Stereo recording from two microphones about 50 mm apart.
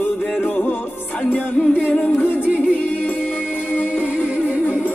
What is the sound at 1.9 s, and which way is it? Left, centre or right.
A capella, left.